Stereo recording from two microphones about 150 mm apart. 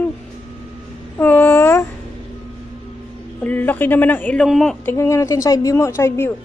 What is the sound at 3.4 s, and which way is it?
Speech, 10° left (ahead or behind).